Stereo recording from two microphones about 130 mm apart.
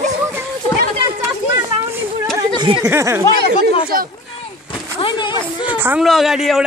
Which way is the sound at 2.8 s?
20° right (ahead or behind).